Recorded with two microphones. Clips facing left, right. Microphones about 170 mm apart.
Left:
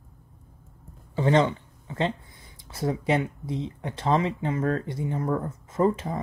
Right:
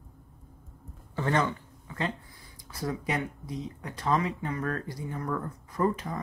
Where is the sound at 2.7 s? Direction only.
25° left (ahead or behind).